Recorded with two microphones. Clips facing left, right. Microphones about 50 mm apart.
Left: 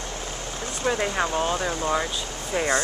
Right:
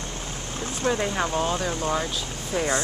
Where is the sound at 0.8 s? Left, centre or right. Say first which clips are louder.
Left 1 dB; left.